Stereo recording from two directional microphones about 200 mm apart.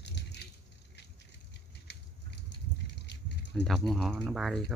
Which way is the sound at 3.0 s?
60° left (ahead or behind).